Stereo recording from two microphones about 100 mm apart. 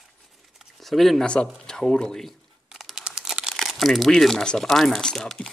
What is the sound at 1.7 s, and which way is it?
Crumpling, 5° left (ahead or behind).